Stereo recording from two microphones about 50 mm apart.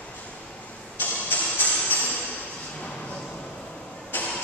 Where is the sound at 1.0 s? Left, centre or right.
Left.